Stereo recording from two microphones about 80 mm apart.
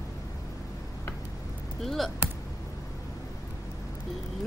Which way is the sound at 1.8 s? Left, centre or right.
Centre.